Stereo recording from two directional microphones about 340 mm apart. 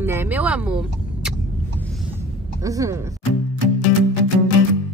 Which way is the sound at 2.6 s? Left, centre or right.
Centre.